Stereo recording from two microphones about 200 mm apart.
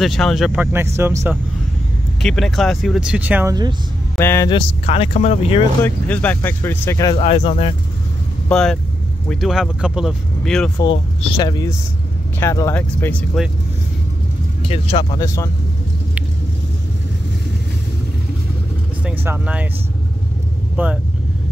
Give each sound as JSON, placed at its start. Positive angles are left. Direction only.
{"t": 0.0, "sound": "speech", "side_deg": 0}
{"t": 2.2, "sound": "speech", "side_deg": 0}
{"t": 4.2, "sound": "speech", "side_deg": 15}
{"t": 5.8, "sound": "speech", "side_deg": 10}
{"t": 7.2, "sound": "speech", "side_deg": 30}
{"t": 8.5, "sound": "speech", "side_deg": 5}
{"t": 10.8, "sound": "speech", "side_deg": 25}
{"t": 14.7, "sound": "speech", "side_deg": 25}
{"t": 19.0, "sound": "speech", "side_deg": -5}
{"t": 20.7, "sound": "speech", "side_deg": -5}